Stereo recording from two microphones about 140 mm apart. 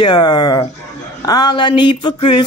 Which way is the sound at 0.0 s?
30° left (ahead or behind).